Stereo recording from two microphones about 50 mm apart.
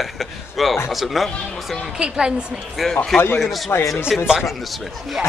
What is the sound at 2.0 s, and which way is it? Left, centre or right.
Speech, centre.